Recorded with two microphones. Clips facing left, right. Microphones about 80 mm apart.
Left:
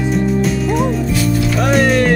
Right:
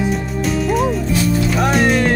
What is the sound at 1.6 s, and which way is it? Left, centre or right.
Speech, centre.